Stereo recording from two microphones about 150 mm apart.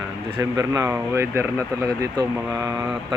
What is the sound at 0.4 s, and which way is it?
Speech, 20° right (ahead or behind).